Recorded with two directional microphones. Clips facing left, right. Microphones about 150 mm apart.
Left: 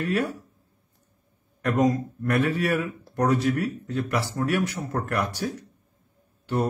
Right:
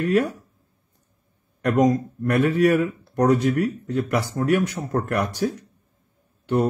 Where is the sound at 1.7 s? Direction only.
45° right (ahead or behind).